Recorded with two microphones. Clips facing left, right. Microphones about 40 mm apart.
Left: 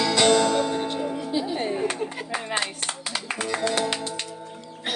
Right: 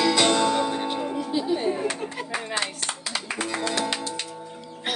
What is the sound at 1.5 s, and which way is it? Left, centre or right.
Music, left.